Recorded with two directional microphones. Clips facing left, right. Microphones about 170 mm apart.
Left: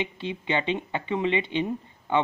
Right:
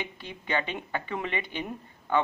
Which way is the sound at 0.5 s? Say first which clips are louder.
Left 3 dB; 25° left (ahead or behind).